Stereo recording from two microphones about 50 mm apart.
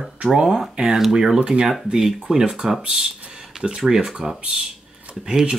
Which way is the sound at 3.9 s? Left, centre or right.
Centre.